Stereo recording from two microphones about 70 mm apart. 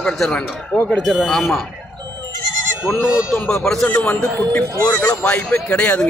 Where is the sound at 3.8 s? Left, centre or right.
Left.